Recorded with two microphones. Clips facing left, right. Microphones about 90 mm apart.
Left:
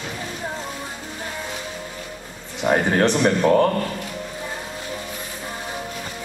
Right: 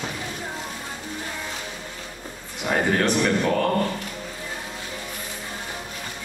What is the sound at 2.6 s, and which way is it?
Speech, 25° left (ahead or behind).